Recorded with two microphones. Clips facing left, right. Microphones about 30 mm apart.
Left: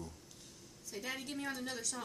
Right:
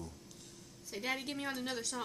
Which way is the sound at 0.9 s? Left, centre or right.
Right.